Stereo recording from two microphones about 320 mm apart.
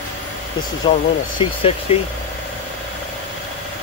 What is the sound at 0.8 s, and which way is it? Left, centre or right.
Speech, centre.